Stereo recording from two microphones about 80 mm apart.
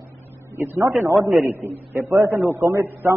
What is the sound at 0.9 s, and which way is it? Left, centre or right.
A man's voice, right.